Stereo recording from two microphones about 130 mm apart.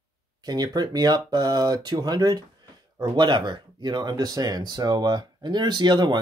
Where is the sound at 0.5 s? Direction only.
30° right (ahead or behind).